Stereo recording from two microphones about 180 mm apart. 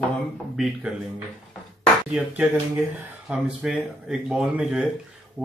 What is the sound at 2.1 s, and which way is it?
Speech, 10° right (ahead or behind).